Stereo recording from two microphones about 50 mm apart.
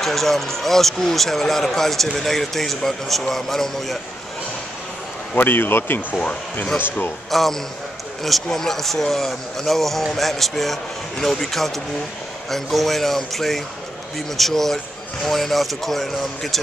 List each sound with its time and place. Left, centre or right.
0.0 s speech: centre
5.3 s speech: left
6.2 s speech: left
7.2 s speech: centre